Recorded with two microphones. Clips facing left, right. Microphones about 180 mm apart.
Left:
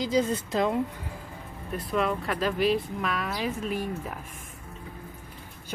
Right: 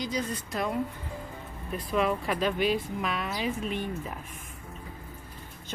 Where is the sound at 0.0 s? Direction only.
25° left (ahead or behind).